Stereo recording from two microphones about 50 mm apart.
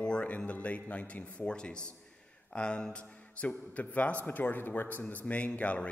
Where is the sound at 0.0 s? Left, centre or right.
Left.